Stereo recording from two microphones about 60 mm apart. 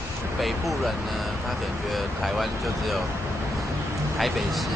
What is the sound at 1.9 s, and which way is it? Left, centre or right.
Speech, centre.